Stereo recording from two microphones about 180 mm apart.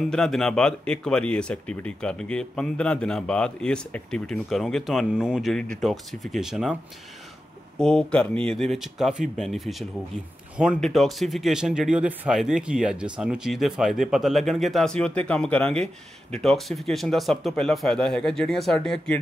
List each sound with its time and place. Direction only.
0.0 s speech: centre (ahead or behind)
7.8 s speech: 5° left (ahead or behind)